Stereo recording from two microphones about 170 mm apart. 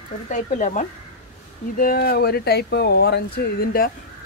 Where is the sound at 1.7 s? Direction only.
60° left (ahead or behind).